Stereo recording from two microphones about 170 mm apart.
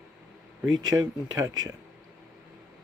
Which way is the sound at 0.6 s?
20° right (ahead or behind).